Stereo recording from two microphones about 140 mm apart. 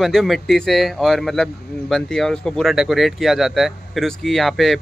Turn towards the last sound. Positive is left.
turn(degrees=0)  # may be behind; listen again after turning